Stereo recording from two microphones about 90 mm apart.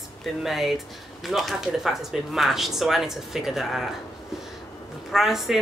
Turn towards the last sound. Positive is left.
turn(degrees=-5)  # may be behind; listen again after turning